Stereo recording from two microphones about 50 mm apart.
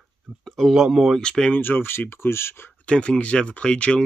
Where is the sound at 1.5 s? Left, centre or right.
Left.